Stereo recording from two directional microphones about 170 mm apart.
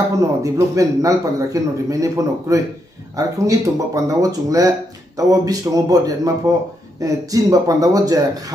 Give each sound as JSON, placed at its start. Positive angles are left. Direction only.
{"t": 0.4, "sound": "speech", "side_deg": -20}